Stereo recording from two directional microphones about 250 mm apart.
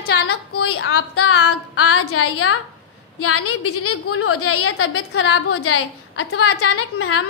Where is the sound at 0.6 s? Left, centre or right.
Left.